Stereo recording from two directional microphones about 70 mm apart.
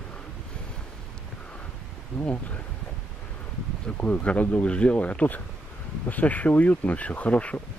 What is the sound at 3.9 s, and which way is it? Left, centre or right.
Speech, left.